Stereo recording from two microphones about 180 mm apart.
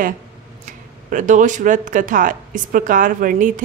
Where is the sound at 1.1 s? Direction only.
45° right (ahead or behind).